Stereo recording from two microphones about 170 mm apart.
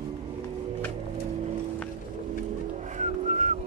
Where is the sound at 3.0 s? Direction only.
45° right (ahead or behind).